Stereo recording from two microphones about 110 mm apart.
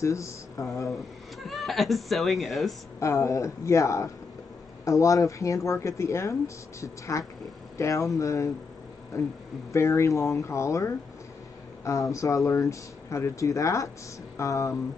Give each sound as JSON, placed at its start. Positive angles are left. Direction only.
{"t": 0.0, "sound": "speech", "side_deg": 25}
{"t": 1.4, "sound": "speech", "side_deg": 0}
{"t": 3.0, "sound": "speech", "side_deg": 25}